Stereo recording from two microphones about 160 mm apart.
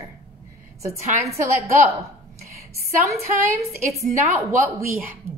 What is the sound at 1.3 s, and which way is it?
Speech, 20° right (ahead or behind).